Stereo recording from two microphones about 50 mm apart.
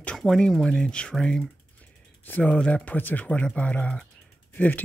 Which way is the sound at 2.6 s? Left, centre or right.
Left.